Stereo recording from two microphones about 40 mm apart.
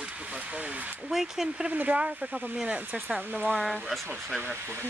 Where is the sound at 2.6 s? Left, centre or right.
Right.